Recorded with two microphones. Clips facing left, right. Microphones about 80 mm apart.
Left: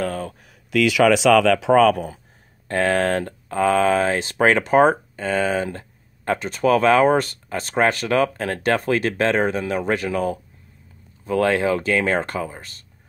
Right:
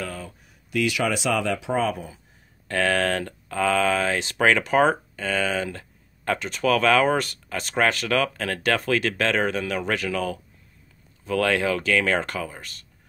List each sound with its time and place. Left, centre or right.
0.0 s a sound: left
0.7 s speech: left
2.7 s speech: left